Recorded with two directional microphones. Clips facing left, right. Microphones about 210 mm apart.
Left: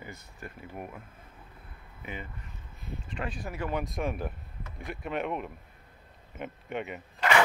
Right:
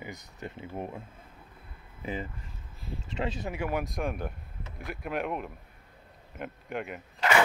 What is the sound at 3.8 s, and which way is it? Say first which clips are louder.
Speech: even; centre (ahead or behind).